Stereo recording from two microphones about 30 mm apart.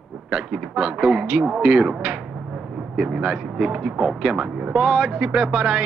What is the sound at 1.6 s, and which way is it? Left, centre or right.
Speech, right.